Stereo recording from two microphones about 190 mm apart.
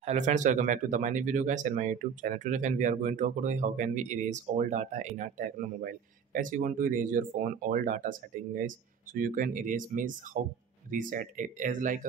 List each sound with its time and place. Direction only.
0.0 s speech: 40° right (ahead or behind)